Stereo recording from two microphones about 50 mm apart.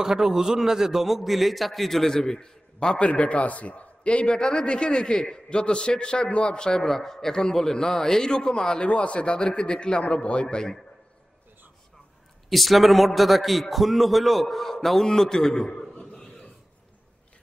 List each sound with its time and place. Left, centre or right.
0.0 s a man's voice: centre
12.4 s a man's voice: centre